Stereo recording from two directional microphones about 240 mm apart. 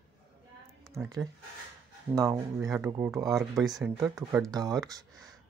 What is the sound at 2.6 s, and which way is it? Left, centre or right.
Speech, centre.